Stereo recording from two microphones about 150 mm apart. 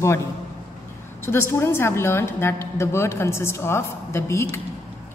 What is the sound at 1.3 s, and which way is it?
A woman's voice, 15° left (ahead or behind).